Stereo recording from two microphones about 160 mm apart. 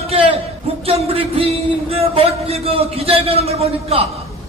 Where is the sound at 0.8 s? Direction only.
35° right (ahead or behind).